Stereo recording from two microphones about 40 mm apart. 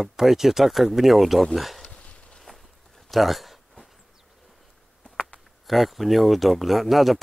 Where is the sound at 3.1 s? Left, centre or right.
Centre.